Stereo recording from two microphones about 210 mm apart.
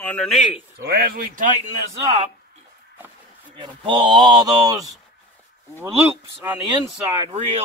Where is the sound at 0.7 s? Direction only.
50° right (ahead or behind).